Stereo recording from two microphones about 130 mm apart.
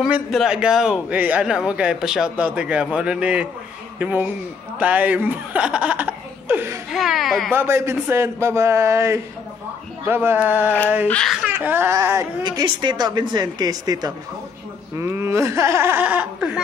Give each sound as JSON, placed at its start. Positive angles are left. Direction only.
{"t": 0.0, "sound": "a man's voice", "side_deg": -5}
{"t": 6.9, "sound": "speech", "side_deg": 0}
{"t": 7.5, "sound": "a man's voice", "side_deg": -20}
{"t": 11.1, "sound": "speech", "side_deg": 5}
{"t": 11.4, "sound": "speech", "side_deg": -15}
{"t": 15.0, "sound": "a man's voice", "side_deg": -20}